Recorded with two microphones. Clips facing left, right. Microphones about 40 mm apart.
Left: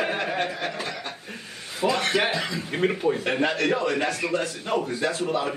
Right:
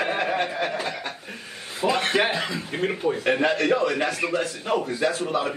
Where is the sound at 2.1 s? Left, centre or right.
Centre.